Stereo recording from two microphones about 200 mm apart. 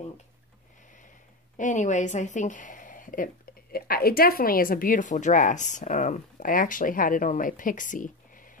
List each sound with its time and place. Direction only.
1.6 s speech: 40° left (ahead or behind)